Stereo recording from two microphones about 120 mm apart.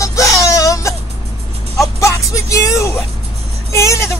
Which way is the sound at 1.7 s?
25° left (ahead or behind).